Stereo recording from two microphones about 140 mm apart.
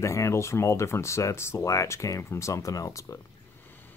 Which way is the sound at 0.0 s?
20° left (ahead or behind).